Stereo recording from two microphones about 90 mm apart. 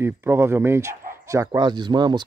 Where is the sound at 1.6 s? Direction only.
55° right (ahead or behind).